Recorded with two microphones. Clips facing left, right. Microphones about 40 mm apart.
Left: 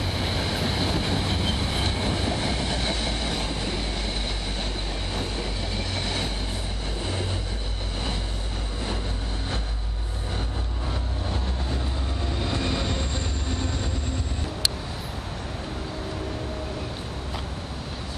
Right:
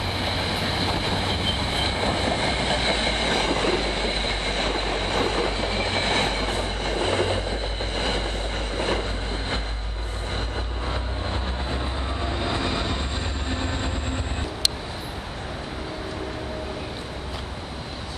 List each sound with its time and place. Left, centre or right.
0.0 s train: centre; by 7.4 s right
8.7 s train: right
10.9 s train: right
13.5 s train: right